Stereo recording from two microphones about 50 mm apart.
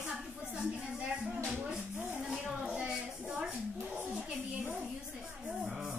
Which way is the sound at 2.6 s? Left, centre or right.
Centre.